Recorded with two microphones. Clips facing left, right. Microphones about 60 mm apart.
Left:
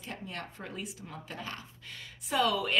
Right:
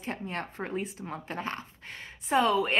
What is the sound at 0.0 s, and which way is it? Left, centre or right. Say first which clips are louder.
A woman's voice: right 6 dB; right.